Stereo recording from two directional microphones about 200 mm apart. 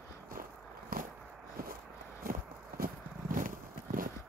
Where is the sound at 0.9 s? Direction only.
50° right (ahead or behind).